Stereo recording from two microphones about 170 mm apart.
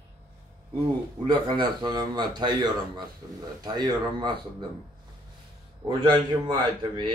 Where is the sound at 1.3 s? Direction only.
25° right (ahead or behind).